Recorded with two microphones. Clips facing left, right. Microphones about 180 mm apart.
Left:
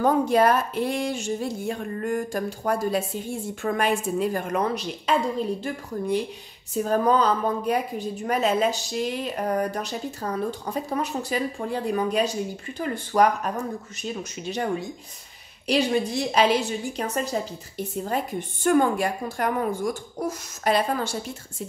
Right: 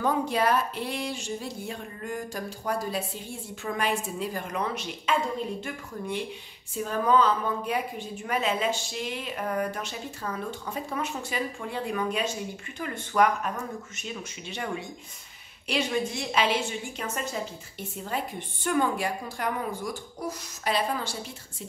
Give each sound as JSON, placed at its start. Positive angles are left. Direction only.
{"t": 0.0, "sound": "a woman's voice", "side_deg": 45}